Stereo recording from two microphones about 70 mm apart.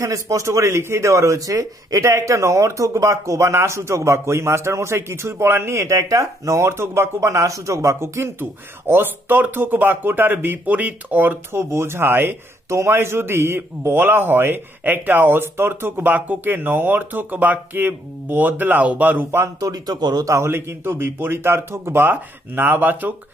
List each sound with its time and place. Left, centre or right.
0.0 s a man's voice: right
11.5 s speech: right
12.6 s a man's voice: right
19.3 s a man's voice: right
19.7 s a man's voice: right
20.2 s speech: right